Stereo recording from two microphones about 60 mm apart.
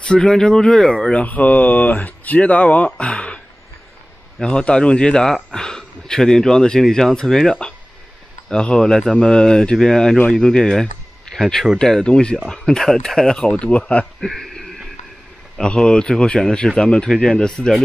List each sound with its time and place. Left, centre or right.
0.0 s speech: centre
4.4 s speech: centre
14.2 s a sound: centre
15.5 s speech: centre